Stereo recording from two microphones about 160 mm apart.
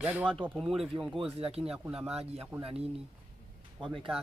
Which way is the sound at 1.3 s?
35° right (ahead or behind).